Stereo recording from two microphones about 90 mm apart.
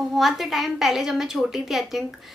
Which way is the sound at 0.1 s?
Centre (ahead or behind).